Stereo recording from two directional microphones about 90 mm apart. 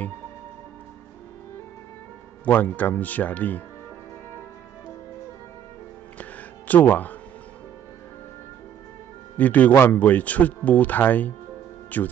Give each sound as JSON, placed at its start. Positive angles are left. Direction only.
{"t": 2.4, "sound": "speech", "side_deg": 20}
{"t": 6.7, "sound": "speech", "side_deg": 20}
{"t": 9.4, "sound": "speech", "side_deg": 15}